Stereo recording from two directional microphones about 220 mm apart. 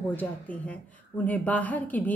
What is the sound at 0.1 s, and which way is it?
Speech, 5° left (ahead or behind).